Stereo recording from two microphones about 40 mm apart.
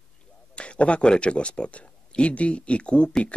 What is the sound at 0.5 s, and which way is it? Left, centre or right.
Speech, left.